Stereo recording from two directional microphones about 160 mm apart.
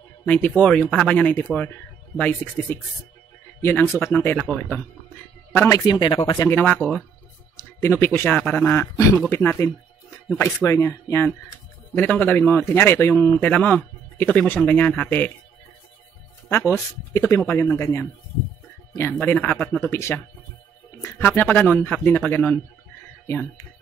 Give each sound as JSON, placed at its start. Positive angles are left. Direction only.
{"t": 0.2, "sound": "speech", "side_deg": 10}
{"t": 5.9, "sound": "speech", "side_deg": 30}
{"t": 6.4, "sound": "speech", "side_deg": 10}
{"t": 8.9, "sound": "speech", "side_deg": 20}
{"t": 16.4, "sound": "speech", "side_deg": 15}